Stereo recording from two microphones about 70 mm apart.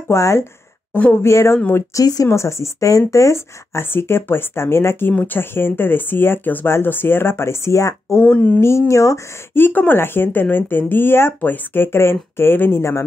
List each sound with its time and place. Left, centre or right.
0.1 s speech: left
2.0 s speech: left
2.2 s speech: left
9.5 s speech: left